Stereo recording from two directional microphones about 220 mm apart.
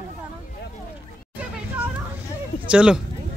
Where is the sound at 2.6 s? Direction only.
5° right (ahead or behind).